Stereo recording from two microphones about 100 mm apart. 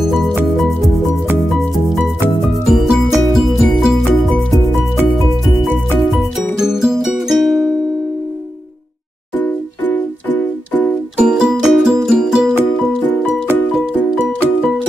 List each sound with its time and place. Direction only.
2.7 s music: centre (ahead or behind)
6.6 s music: 5° right (ahead or behind)
9.4 s music: 20° left (ahead or behind)
11.1 s music: 10° right (ahead or behind)